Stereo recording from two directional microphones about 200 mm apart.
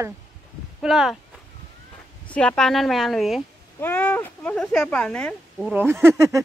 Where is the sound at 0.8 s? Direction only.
Centre (ahead or behind).